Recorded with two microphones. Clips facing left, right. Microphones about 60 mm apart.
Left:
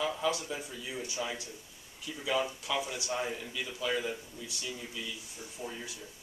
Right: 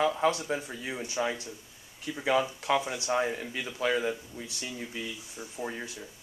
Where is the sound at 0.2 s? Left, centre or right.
Right.